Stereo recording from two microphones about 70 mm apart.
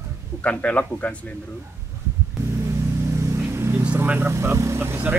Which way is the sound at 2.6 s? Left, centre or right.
Right.